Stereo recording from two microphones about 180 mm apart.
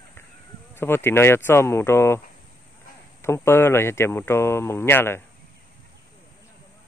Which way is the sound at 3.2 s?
15° left (ahead or behind).